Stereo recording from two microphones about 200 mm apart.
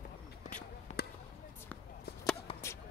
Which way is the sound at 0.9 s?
35° left (ahead or behind).